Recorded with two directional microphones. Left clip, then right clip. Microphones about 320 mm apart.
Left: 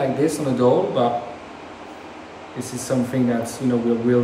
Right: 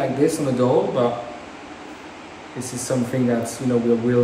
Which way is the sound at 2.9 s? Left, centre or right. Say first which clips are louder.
Left 1 dB; centre.